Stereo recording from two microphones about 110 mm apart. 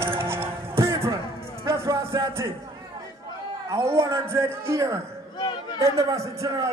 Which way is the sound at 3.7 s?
25° right (ahead or behind).